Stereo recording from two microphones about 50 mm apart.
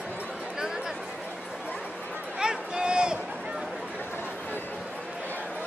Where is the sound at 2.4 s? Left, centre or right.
Centre.